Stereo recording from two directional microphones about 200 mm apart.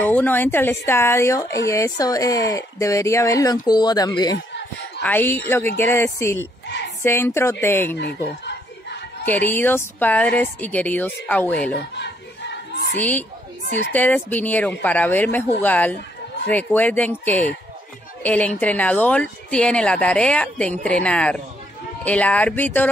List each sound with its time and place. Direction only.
0.0 s speech: 10° left (ahead or behind)
9.2 s speech: 10° left (ahead or behind)
11.7 s battle cry: 60° left (ahead or behind)
13.9 s a woman's voice: 10° left (ahead or behind)